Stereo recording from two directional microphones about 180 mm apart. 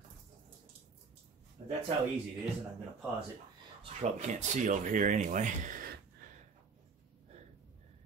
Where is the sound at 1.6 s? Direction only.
40° right (ahead or behind).